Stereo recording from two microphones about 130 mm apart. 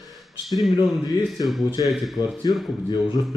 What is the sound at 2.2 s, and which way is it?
Speech, 35° left (ahead or behind).